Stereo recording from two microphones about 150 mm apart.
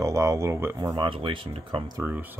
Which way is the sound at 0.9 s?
35° right (ahead or behind).